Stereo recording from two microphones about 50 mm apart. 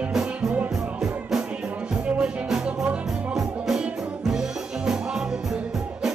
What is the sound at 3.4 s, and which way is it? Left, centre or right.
Music, centre.